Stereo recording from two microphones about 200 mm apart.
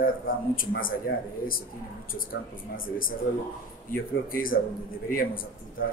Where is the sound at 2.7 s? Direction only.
45° left (ahead or behind).